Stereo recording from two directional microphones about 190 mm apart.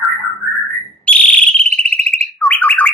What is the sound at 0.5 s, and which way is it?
Whistle, 5° left (ahead or behind).